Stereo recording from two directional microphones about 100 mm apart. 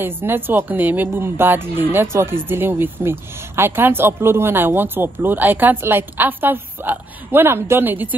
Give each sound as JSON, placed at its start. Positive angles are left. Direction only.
{"t": 0.0, "sound": "speech", "side_deg": -20}